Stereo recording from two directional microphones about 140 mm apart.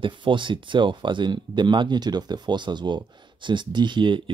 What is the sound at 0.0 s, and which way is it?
Speech, 35° right (ahead or behind).